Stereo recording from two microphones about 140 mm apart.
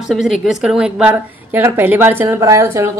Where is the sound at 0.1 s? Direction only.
5° right (ahead or behind).